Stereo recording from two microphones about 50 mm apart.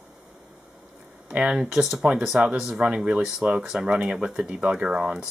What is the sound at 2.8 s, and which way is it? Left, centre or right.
Speech, right.